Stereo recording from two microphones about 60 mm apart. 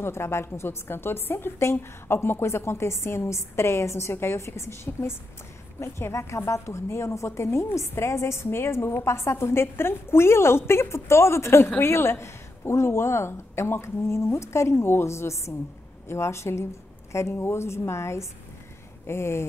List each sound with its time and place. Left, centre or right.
0.0 s a woman's voice: left